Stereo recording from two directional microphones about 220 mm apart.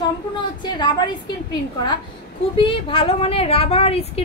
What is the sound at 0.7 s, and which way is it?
A woman's voice, 20° left (ahead or behind).